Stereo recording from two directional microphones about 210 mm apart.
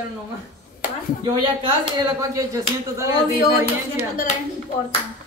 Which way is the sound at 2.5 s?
15° right (ahead or behind).